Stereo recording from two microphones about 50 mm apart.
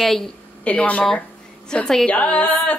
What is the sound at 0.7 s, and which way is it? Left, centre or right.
Female singing, left.